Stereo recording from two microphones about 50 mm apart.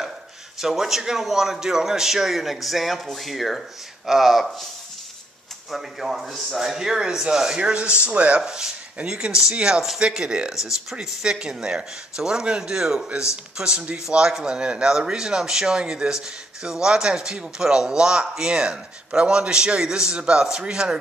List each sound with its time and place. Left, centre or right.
0.6 s a man's voice: centre
5.7 s speech: centre
10.5 s speech: centre